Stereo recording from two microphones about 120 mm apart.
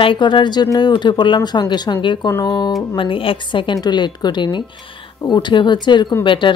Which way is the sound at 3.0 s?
45° left (ahead or behind).